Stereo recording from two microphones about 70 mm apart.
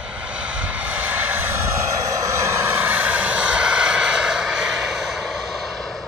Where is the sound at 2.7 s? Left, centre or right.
Right; by 5.7 s centre.